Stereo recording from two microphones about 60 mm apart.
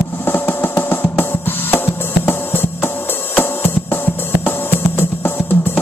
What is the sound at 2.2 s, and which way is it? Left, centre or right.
Music, left.